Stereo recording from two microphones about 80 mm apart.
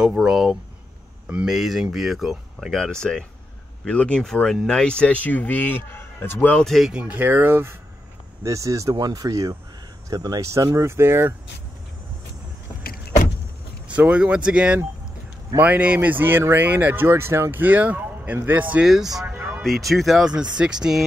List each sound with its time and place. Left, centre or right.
0.0 s a man's voice: centre; by 6.5 s left
6.6 s speech: centre
6.9 s speech: centre
8.5 s speech: right
13.9 s speech: centre
19.3 s music: right
19.6 s speech: centre